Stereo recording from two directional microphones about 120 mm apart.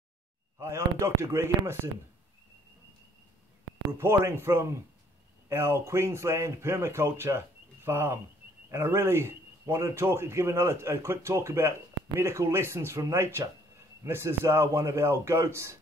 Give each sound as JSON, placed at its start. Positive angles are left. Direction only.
{"t": 0.6, "sound": "a man's voice", "side_deg": -25}
{"t": 4.0, "sound": "a man's voice", "side_deg": -20}